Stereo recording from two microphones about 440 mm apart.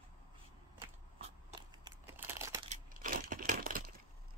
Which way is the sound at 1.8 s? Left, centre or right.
Centre.